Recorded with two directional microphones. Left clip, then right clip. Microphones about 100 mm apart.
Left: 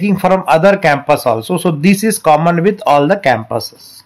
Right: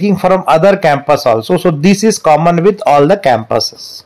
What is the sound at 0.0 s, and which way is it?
A man's voice, 30° right (ahead or behind).